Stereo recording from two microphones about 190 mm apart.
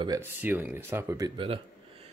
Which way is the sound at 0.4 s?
10° right (ahead or behind).